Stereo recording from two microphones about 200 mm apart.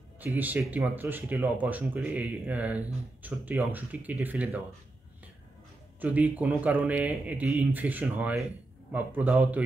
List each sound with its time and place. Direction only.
0.2 s speech: 10° right (ahead or behind)
5.9 s speech: 10° right (ahead or behind)